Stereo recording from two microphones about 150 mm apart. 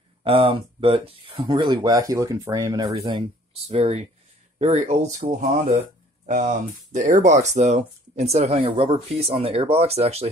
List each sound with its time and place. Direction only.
0.2 s speech: 35° right (ahead or behind); by 2.9 s 20° right (ahead or behind)
3.1 s speech: 40° right (ahead or behind)